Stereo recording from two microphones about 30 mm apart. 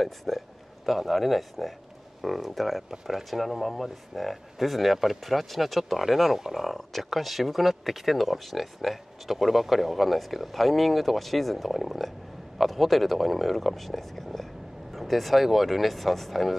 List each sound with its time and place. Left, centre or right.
0.0 s speech: centre